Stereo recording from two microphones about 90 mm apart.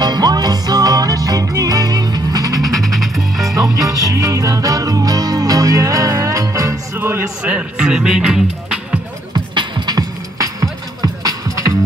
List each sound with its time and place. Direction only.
0.0 s music: 50° right (ahead or behind)
2.6 s music: centre (ahead or behind)
3.9 s music: 40° right (ahead or behind)
7.0 s music: 25° right (ahead or behind)
7.5 s music: 10° right (ahead or behind)
9.3 s music: 50° right (ahead or behind)